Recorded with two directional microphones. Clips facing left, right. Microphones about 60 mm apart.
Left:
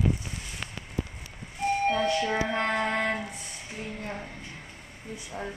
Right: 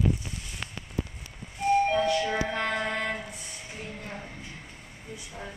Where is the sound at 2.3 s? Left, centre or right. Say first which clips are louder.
Left 2 dB; centre.